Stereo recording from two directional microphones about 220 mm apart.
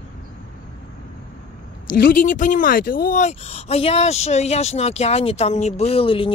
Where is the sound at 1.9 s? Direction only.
40° left (ahead or behind).